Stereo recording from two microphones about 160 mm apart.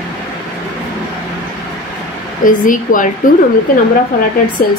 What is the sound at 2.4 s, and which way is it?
Speech, 55° left (ahead or behind).